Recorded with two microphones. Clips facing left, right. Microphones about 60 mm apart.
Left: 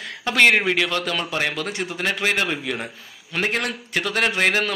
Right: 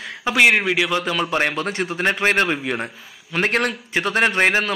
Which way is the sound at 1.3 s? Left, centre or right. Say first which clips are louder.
Right 4 dB; right.